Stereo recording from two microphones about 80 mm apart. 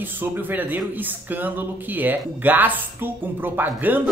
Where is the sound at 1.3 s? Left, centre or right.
Right.